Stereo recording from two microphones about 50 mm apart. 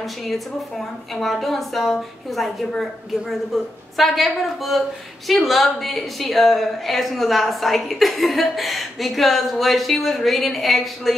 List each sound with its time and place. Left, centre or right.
0.3 s speech: centre
3.9 s speech: centre